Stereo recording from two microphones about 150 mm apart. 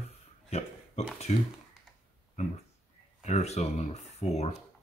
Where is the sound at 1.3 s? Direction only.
45° left (ahead or behind).